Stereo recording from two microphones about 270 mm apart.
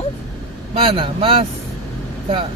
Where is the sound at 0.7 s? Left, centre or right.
Right.